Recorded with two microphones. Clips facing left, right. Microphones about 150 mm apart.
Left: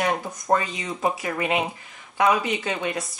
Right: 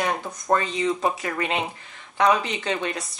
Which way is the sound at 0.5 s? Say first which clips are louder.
Right 4 dB; 15° left (ahead or behind).